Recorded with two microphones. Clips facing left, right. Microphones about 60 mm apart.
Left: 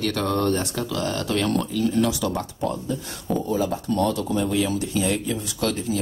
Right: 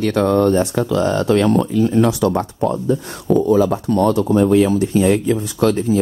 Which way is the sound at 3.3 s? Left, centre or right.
Right.